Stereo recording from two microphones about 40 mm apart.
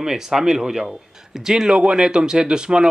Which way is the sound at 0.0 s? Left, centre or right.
Centre.